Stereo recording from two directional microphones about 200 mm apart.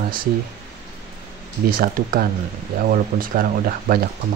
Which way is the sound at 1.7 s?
45° right (ahead or behind).